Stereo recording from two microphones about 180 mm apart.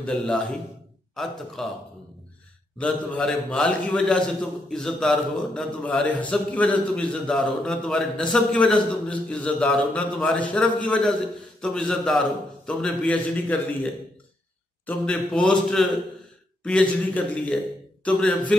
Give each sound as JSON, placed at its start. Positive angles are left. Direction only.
{"t": 1.1, "sound": "a man's voice", "side_deg": 0}
{"t": 2.8, "sound": "a man's voice", "side_deg": 5}
{"t": 14.9, "sound": "a man's voice", "side_deg": 5}